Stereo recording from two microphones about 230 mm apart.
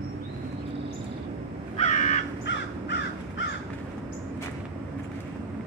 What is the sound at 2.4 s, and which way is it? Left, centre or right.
Crow, left.